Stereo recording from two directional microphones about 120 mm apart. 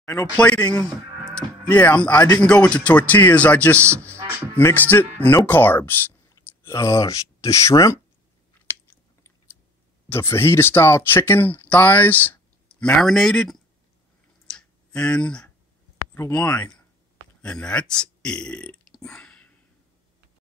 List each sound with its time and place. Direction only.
0.0 s speech: 25° left (ahead or behind)
0.4 s speech: 10° left (ahead or behind); by 8.0 s 25° left (ahead or behind)
8.6 s chewing: 15° left (ahead or behind)
10.3 s speech: 20° left (ahead or behind); by 13.6 s 5° left (ahead or behind)
14.5 s clicking: 5° left (ahead or behind)
16.2 s speech: 15° left (ahead or behind)